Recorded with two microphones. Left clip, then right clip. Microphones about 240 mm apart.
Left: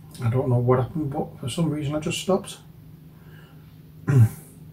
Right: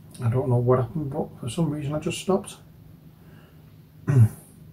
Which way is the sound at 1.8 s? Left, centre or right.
Centre.